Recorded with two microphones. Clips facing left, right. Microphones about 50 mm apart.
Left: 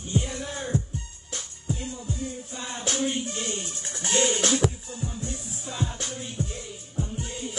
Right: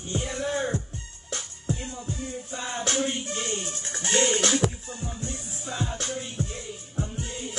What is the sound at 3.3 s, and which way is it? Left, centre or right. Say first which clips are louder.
Speech: right 1 dB; right.